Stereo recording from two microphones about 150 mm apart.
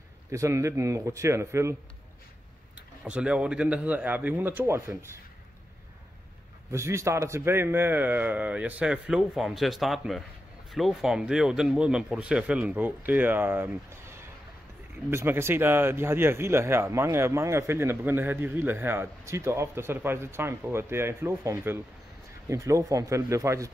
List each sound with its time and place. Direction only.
0.3 s a man's voice: 20° right (ahead or behind)
3.0 s speech: 5° right (ahead or behind)
6.7 s a man's voice: 20° right (ahead or behind)